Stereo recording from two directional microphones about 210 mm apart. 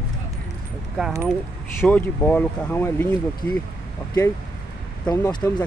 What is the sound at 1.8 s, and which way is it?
Speech, 5° left (ahead or behind).